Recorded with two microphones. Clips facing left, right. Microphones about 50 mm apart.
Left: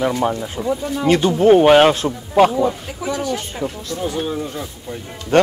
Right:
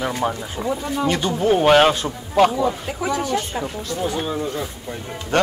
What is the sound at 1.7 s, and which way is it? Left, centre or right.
Speech, centre.